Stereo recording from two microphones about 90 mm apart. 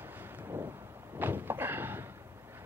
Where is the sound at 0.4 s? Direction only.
25° right (ahead or behind).